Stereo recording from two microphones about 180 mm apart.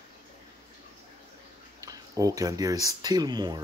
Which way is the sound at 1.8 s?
20° right (ahead or behind).